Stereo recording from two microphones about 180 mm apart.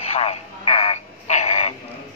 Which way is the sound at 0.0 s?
35° left (ahead or behind).